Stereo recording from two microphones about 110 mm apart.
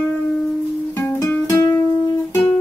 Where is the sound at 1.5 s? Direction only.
30° left (ahead or behind).